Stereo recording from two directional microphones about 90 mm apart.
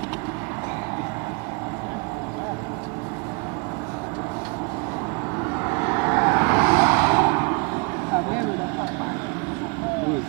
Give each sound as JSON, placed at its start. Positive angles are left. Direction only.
{"t": 5.7, "sound": "vehicle", "side_deg": -30}